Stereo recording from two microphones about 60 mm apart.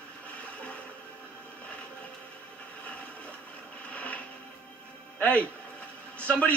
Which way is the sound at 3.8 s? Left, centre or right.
Left.